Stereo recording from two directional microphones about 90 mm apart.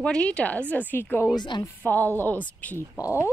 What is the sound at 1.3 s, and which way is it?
Speech, 55° left (ahead or behind).